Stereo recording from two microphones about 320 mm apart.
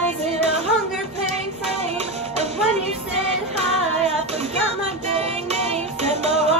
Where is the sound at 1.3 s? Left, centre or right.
Centre.